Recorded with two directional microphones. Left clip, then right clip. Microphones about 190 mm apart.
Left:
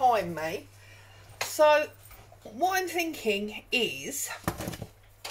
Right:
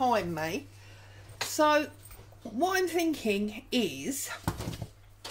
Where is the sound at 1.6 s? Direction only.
45° right (ahead or behind).